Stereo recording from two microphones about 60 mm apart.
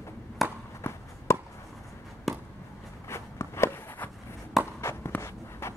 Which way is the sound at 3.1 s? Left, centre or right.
Left.